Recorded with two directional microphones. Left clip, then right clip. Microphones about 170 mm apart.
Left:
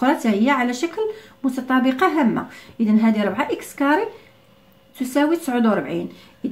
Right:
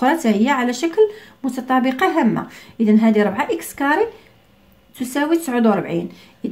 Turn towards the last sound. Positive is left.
turn(degrees=-45)  # may be behind; listen again after turning